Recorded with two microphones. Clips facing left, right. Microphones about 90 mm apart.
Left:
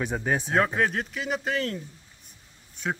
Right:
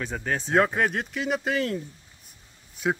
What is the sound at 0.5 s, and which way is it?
Speech, centre (ahead or behind).